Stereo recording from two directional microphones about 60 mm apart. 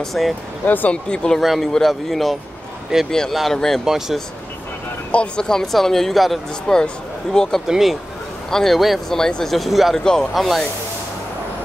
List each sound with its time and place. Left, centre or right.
0.0 s speech: centre
0.7 s speech: left
1.1 s speech: centre
1.4 s speech: centre
3.8 s speech: centre
5.1 s speech: centre
7.6 s speech: centre
8.5 s speech: centre
9.9 s speech: centre